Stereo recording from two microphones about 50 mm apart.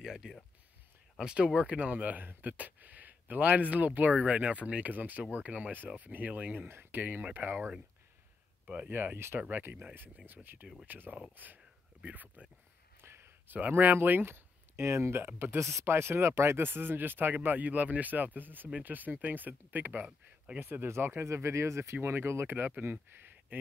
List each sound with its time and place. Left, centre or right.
0.0 s speech: centre
1.9 s speech: right
6.7 s speech: right
7.0 s speech: right
7.5 s speech: centre
8.9 s speech: right
11.3 s a sound: right
13.0 s a sound: right
13.5 s speech: right
14.0 s a sound: right
14.9 s speech: right
15.2 s speech: right
22.0 s speech: right